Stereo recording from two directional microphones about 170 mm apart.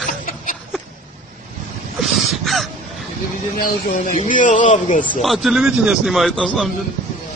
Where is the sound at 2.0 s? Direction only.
Centre (ahead or behind).